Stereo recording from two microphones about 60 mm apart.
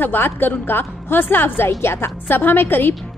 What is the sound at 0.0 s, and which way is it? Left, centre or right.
A woman's voice, left.